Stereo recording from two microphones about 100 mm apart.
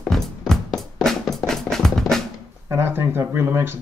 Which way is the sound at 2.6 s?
25° right (ahead or behind).